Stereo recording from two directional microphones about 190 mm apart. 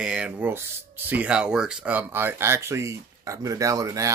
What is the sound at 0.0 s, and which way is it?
Speech, 5° right (ahead or behind).